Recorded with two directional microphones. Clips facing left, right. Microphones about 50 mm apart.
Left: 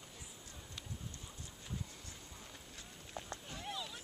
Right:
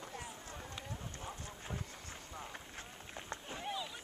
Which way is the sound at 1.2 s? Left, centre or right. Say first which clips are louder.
Right 7 dB; right.